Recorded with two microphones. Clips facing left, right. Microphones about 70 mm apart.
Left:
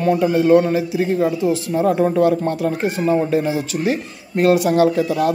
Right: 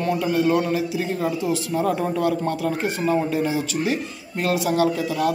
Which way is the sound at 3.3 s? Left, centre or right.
Left.